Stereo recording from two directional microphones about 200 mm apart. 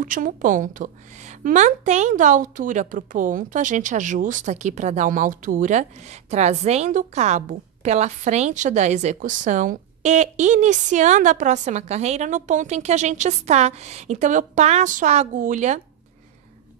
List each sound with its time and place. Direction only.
0.0 s speech: 40° right (ahead or behind)